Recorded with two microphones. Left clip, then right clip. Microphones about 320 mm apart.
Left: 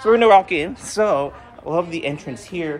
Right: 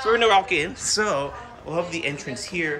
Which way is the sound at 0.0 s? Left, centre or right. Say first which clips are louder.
Left 6 dB; centre.